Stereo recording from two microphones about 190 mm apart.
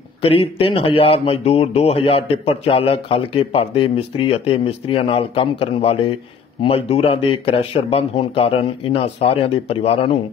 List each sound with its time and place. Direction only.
0.3 s speech: 30° left (ahead or behind)